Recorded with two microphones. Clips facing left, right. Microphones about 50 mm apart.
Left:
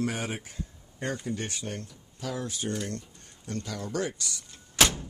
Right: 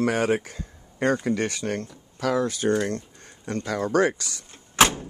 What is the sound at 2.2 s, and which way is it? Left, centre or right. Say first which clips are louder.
Speech: right 10 dB; right.